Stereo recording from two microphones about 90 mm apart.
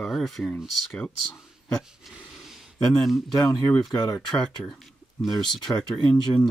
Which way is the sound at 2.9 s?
Centre (ahead or behind).